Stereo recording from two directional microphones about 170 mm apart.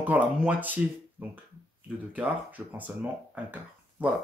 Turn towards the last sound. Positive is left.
turn(degrees=-10)  # may be behind; listen again after turning